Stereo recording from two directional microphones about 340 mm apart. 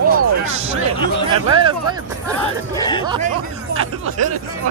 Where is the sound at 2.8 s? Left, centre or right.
Centre.